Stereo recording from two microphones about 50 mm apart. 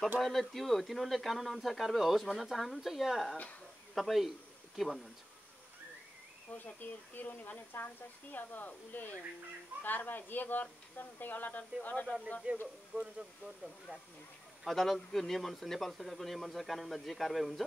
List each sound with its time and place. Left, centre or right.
0.2 s speech: centre
6.5 s speech: left
12.5 s speech: right
12.9 s speech: left
14.6 s speech: centre